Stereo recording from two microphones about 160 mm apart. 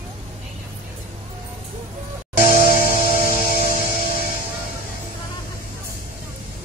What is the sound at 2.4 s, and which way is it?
Music, 60° left (ahead or behind).